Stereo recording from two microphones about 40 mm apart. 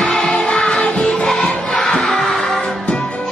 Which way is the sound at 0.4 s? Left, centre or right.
Centre.